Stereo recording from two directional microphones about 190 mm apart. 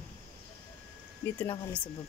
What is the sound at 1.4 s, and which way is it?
Speech, 15° left (ahead or behind).